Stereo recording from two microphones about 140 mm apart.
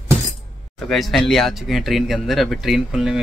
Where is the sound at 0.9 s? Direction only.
Centre (ahead or behind).